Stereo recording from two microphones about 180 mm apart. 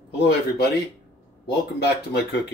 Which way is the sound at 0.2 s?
65° left (ahead or behind).